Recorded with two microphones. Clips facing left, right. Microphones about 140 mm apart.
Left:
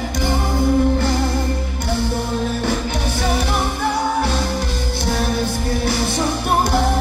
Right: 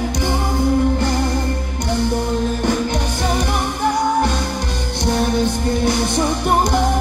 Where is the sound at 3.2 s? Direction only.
15° right (ahead or behind).